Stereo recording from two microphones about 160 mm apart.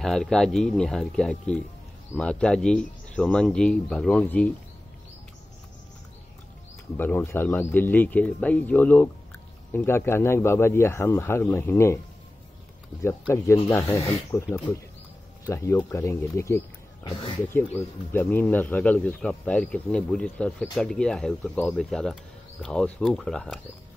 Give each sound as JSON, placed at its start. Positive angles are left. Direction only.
{"t": 0.0, "sound": "speech", "side_deg": 0}
{"t": 7.0, "sound": "speech", "side_deg": 10}
{"t": 13.7, "sound": "speech", "side_deg": 20}
{"t": 14.3, "sound": "speech", "side_deg": 5}
{"t": 15.4, "sound": "speech", "side_deg": 15}